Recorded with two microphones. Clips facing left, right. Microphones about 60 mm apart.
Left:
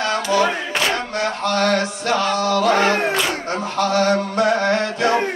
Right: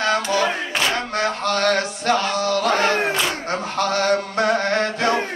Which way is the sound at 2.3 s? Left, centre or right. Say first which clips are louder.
Left 2 dB; left.